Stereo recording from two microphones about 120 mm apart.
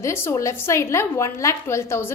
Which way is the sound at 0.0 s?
25° left (ahead or behind).